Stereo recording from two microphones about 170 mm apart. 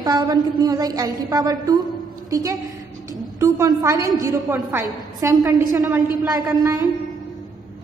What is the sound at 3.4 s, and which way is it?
A woman's voice, 15° right (ahead or behind).